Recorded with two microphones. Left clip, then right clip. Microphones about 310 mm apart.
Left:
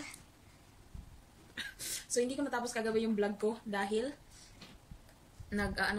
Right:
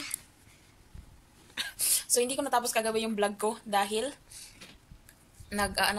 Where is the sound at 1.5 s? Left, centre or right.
Centre.